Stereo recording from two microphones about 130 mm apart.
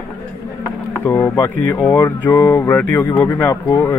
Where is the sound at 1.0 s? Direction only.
15° left (ahead or behind).